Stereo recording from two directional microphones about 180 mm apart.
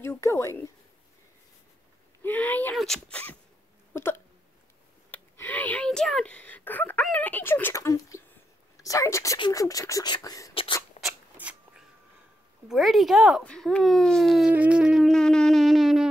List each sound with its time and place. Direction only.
0.0 s speech: 15° left (ahead or behind)
2.2 s speech: 10° left (ahead or behind)
3.9 s hiccup: 15° left (ahead or behind)
5.1 s speech: 10° left (ahead or behind); by 10.8 s 25° left (ahead or behind)
11.0 s a sound: 5° right (ahead or behind)
12.6 s a child's voice: centre (ahead or behind)